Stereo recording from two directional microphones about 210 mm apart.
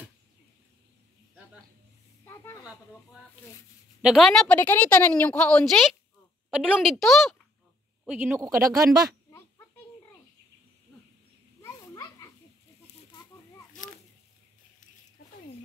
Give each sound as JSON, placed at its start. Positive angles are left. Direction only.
{"t": 2.2, "sound": "a sound", "side_deg": 15}
{"t": 4.0, "sound": "a woman's voice", "side_deg": 0}
{"t": 11.9, "sound": "children playing", "side_deg": 20}